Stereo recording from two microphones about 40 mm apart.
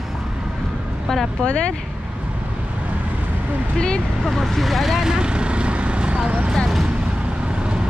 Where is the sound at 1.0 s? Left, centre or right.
Centre.